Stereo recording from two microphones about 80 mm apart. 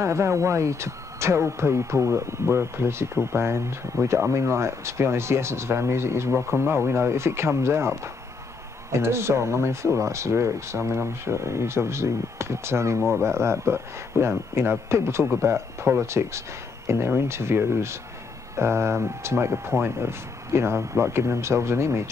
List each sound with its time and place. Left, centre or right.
0.0 s speech: right